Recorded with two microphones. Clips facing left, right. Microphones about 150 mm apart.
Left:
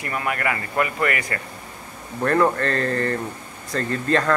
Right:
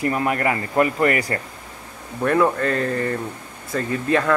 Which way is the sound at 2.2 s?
5° right (ahead or behind).